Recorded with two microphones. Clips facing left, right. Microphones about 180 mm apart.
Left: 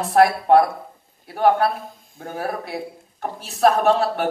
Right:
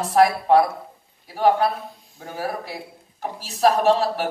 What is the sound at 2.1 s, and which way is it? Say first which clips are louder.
Speech: left 3 dB; 55° left (ahead or behind).